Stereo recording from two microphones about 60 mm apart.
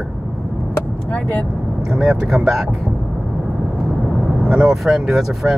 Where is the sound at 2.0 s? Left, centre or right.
Centre.